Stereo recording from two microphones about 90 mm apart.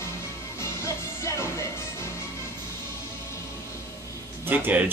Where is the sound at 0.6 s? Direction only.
35° left (ahead or behind).